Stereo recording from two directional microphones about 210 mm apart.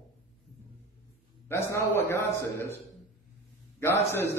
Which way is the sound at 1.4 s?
15° left (ahead or behind).